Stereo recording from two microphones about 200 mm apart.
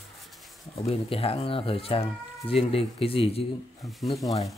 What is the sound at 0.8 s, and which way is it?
Speech, 30° left (ahead or behind).